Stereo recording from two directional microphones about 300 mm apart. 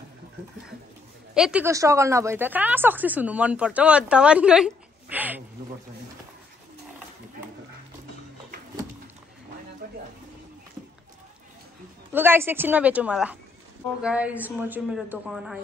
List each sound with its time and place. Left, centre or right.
1.3 s a woman's voice: centre
9.8 s a sound: right
12.1 s a woman's voice: centre